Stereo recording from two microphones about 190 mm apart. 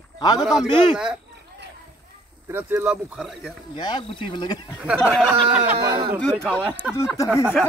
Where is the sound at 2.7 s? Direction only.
5° right (ahead or behind).